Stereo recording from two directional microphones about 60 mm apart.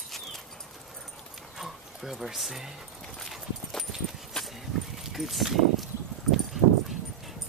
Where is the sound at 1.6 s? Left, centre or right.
Centre.